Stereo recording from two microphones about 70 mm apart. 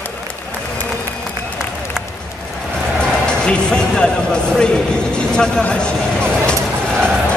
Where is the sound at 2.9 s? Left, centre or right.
Centre.